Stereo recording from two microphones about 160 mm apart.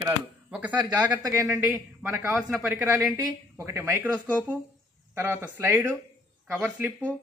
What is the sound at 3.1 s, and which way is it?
Speech, 15° right (ahead or behind).